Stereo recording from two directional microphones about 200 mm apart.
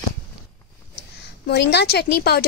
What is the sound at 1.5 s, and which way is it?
Speech, 55° left (ahead or behind).